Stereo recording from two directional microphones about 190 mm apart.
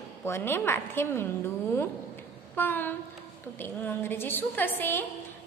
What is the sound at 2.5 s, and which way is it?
A woman's voice, 10° left (ahead or behind).